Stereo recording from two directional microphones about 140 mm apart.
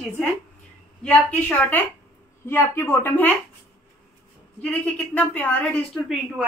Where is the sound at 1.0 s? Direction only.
10° left (ahead or behind).